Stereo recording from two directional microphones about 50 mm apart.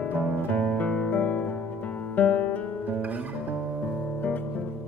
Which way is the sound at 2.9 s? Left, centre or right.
Right.